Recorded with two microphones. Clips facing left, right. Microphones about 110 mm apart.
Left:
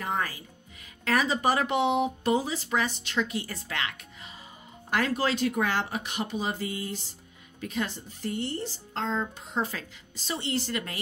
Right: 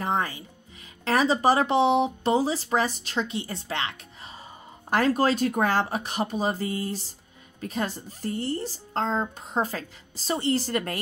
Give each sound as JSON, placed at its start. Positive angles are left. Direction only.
{"t": 0.0, "sound": "music", "side_deg": -25}
{"t": 1.0, "sound": "speech", "side_deg": -30}
{"t": 3.3, "sound": "speech", "side_deg": -25}